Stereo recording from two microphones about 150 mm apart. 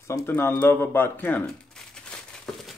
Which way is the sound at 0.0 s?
15° left (ahead or behind).